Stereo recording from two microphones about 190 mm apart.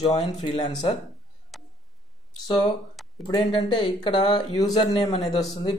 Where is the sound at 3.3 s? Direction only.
25° left (ahead or behind).